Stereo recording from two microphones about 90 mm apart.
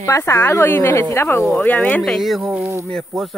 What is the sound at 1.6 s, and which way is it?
Speech, 15° left (ahead or behind).